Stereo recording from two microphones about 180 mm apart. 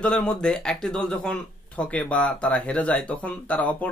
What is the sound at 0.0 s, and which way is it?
Speech, 5° left (ahead or behind).